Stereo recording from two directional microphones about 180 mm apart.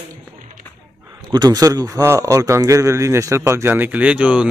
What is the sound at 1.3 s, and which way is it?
A man's voice, 20° right (ahead or behind).